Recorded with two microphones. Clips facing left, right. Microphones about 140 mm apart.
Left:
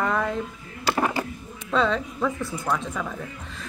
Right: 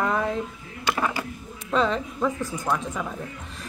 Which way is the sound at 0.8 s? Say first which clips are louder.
Left 2 dB; 30° left (ahead or behind).